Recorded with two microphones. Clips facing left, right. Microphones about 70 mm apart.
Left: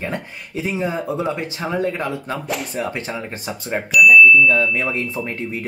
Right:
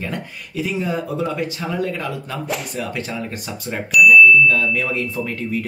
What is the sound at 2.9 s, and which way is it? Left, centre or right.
Speech, left.